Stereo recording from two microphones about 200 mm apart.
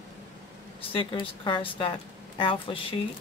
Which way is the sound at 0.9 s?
25° left (ahead or behind).